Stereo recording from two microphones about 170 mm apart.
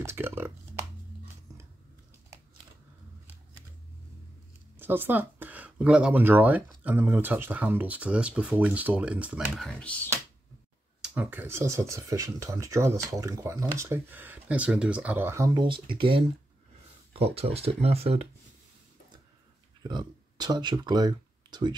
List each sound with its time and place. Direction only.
0.0 s speech: 15° right (ahead or behind)
4.7 s speech: 10° right (ahead or behind)
9.7 s speech: 5° left (ahead or behind)
11.0 s speech: 10° right (ahead or behind); by 18.2 s 35° right (ahead or behind)
19.8 s speech: 25° right (ahead or behind)